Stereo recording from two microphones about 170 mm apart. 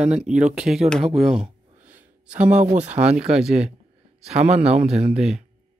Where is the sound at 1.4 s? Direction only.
40° right (ahead or behind).